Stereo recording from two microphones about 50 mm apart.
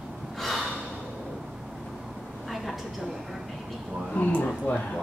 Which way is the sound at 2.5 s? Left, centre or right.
Centre.